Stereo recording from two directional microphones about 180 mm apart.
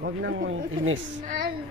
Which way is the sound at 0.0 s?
70° right (ahead or behind).